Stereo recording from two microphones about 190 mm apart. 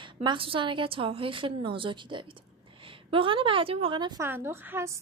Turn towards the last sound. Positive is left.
turn(degrees=-15)  # may be behind; listen again after turning